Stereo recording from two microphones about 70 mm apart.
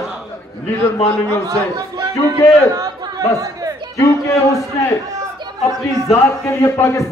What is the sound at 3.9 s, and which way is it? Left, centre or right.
Speech, left.